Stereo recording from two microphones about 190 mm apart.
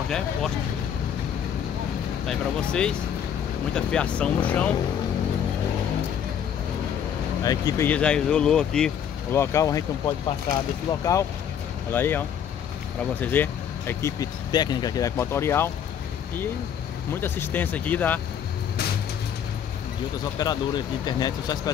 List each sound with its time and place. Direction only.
2.2 s speech: 5° left (ahead or behind)
7.4 s speech: 15° left (ahead or behind)
17.1 s speech: 10° left (ahead or behind)
20.3 s speech: 20° left (ahead or behind)